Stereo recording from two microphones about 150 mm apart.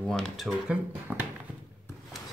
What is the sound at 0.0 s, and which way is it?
Speech, 5° left (ahead or behind).